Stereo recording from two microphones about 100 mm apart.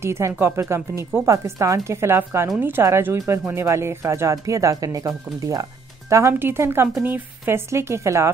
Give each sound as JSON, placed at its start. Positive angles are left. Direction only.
{"t": 0.0, "sound": "speech", "side_deg": -25}